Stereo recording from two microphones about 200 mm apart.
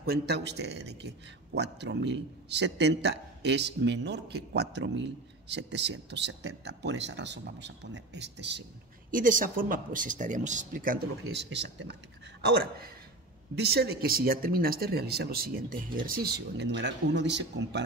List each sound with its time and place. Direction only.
0.0 s a man's voice: 55° right (ahead or behind)
9.1 s speech: 40° right (ahead or behind)
11.5 s a man's voice: 60° right (ahead or behind)